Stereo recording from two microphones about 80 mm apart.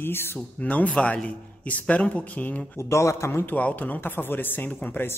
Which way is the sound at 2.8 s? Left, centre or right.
Left.